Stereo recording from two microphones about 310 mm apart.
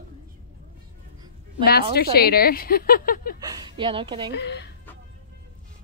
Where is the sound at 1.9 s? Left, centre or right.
Left.